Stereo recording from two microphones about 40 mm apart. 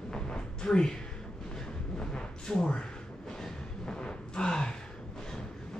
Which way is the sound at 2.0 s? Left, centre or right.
Centre.